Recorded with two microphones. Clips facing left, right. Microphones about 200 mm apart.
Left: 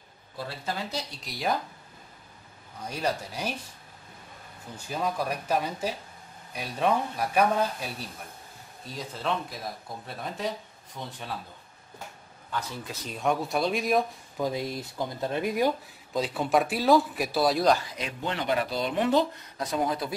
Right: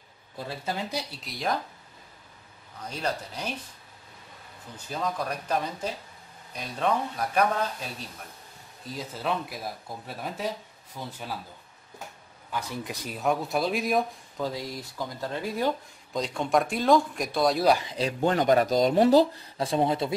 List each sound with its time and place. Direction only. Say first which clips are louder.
1.2 s speech: left 4 dB; centre (ahead or behind)
2.9 s speech: left 1 dB; 10° left (ahead or behind)
4.7 s speech: left 1 dB; 10° left (ahead or behind)
8.9 s speech: right 1 dB; 5° right (ahead or behind)
12.4 s speech: right 1 dB; 15° right (ahead or behind)
14.4 s speech: left 2 dB; 20° left (ahead or behind); by 17.7 s centre (ahead or behind)
18.2 s speech: right 6 dB; 45° right (ahead or behind); by 20.2 s 25° right (ahead or behind)